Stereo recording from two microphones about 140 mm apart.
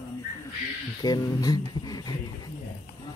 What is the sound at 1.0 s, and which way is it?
Speech, 30° left (ahead or behind).